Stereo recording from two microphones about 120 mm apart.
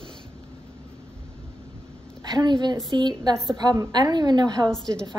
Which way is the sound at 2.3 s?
35° right (ahead or behind).